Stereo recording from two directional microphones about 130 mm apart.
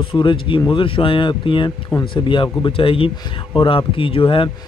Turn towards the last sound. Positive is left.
turn(degrees=40)  # may be behind; listen again after turning